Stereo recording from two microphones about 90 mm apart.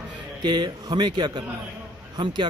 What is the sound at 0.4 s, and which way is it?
Speech, 55° right (ahead or behind).